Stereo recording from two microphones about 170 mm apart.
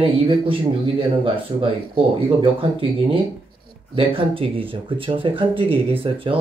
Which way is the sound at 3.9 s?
30° right (ahead or behind).